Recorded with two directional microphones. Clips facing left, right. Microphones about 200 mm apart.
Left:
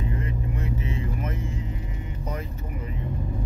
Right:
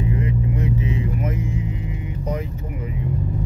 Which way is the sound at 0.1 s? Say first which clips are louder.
Right 7 dB; 15° right (ahead or behind).